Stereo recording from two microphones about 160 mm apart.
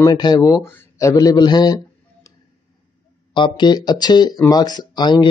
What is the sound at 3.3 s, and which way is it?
Speech, 30° left (ahead or behind).